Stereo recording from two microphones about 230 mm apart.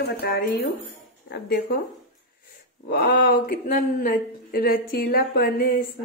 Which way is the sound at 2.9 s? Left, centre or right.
Left.